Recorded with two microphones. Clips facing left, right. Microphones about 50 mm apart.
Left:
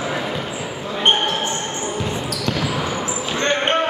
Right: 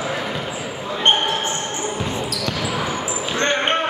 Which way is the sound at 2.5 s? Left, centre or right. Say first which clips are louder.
Left 4 dB; centre.